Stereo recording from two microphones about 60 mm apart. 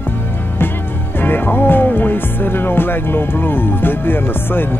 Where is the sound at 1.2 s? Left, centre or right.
Left.